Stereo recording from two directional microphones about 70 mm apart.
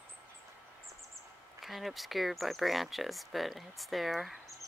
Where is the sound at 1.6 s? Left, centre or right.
Centre.